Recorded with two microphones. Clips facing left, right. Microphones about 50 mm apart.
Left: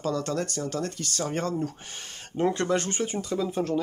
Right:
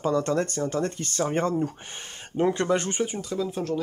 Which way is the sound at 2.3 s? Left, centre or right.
Centre.